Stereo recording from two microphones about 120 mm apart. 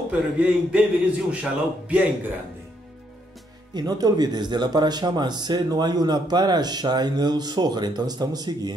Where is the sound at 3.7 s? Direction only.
35° right (ahead or behind).